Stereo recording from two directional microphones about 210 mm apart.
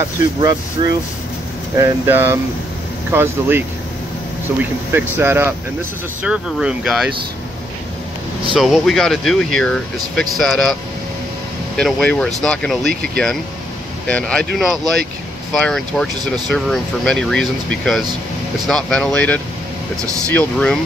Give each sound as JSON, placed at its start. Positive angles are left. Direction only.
{"t": 0.8, "sound": "speech", "side_deg": -20}
{"t": 1.8, "sound": "speech", "side_deg": -10}
{"t": 8.5, "sound": "speech", "side_deg": 0}